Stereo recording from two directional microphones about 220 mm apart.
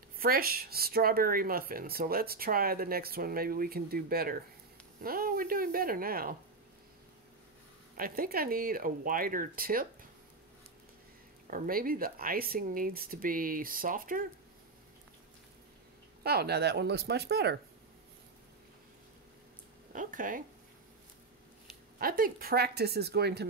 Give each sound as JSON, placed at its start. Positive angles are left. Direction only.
{"t": 0.2, "sound": "speech", "side_deg": -40}
{"t": 8.0, "sound": "speech", "side_deg": -40}
{"t": 11.5, "sound": "speech", "side_deg": -40}
{"t": 16.2, "sound": "speech", "side_deg": -45}
{"t": 19.9, "sound": "speech", "side_deg": -35}
{"t": 21.9, "sound": "speech", "side_deg": -40}